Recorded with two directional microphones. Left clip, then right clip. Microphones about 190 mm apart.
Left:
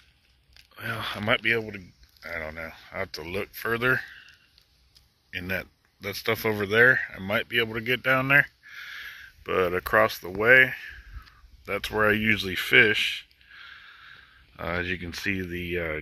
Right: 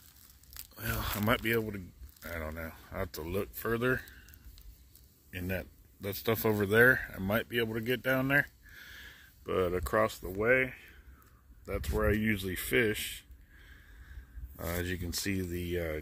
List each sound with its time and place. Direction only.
1.2 s speech: 50° right (ahead or behind); by 4.1 s 30° right (ahead or behind)
5.3 s speech: 25° right (ahead or behind)
10.2 s speech: centre (ahead or behind)